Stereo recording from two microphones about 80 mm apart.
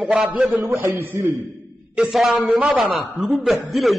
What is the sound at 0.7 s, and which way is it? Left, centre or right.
Speech, right.